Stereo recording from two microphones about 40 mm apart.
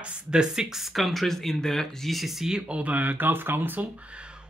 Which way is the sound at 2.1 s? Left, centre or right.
Centre.